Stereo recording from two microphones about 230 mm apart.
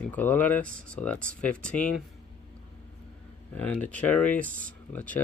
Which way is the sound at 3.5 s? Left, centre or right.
Centre.